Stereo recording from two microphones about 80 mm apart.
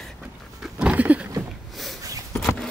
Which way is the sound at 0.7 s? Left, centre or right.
Centre.